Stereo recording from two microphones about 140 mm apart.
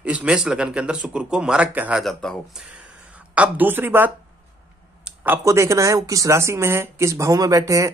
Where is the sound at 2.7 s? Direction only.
10° right (ahead or behind).